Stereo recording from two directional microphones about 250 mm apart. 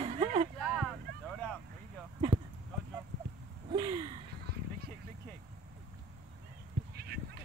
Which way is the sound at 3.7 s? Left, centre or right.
Centre.